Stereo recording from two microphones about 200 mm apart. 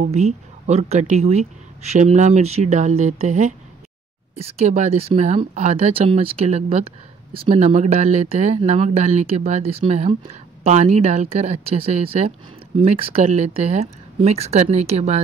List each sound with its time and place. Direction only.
0.0 s speech: 35° right (ahead or behind)